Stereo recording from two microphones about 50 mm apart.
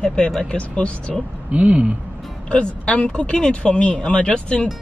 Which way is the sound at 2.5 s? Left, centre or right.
Left.